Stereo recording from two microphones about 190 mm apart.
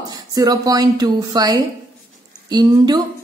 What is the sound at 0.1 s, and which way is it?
A woman's voice, 20° right (ahead or behind).